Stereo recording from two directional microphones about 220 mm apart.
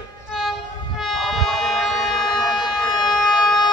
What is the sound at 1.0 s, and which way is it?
Music, centre (ahead or behind).